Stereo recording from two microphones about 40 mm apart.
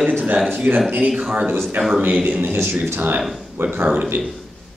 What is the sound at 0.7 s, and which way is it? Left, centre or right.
Speech, right.